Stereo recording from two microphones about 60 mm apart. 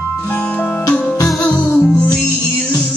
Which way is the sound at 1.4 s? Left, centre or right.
Centre.